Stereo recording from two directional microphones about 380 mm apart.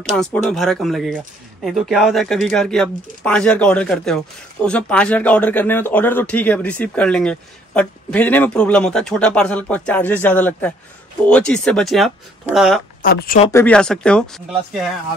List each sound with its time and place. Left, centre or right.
0.1 s speech: centre
13.0 s speech: left
13.5 s speech: centre